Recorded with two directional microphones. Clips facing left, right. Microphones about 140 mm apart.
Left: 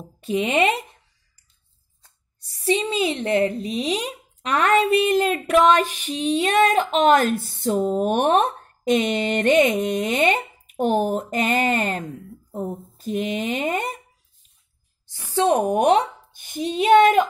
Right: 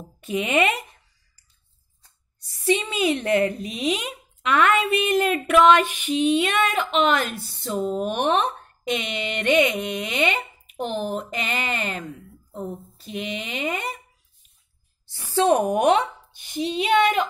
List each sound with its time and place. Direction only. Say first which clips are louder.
0.2 s speech: left 2 dB; 35° left (ahead or behind)
2.6 s speech: left 1 dB; 35° left (ahead or behind)
15.3 s speech: even; 20° left (ahead or behind)
16.4 s speech: left 5 dB; 45° left (ahead or behind)